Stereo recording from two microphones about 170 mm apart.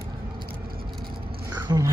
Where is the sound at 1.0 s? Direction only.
25° right (ahead or behind).